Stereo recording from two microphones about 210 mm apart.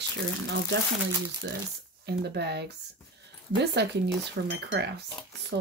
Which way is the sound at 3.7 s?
55° right (ahead or behind).